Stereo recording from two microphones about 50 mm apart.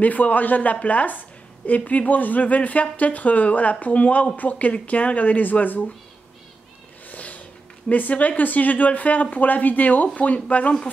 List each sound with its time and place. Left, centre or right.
0.0 s speech: left
7.1 s a sound: left
7.9 s speech: left